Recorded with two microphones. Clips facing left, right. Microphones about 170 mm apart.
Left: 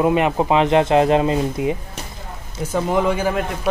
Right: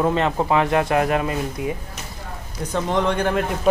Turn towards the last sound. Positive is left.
turn(degrees=5)  # may be behind; listen again after turning